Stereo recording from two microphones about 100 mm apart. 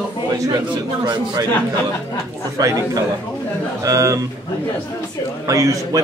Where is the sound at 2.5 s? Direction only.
35° right (ahead or behind).